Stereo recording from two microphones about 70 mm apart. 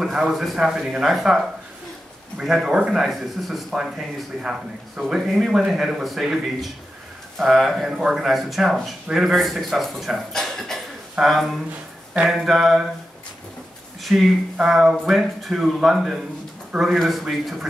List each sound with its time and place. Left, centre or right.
0.0 s speech: centre
14.0 s speech: centre